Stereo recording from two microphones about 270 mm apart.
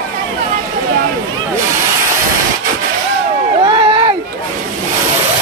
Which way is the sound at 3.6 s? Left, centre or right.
Centre.